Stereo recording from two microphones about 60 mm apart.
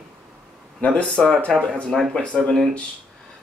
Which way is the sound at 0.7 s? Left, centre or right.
Left.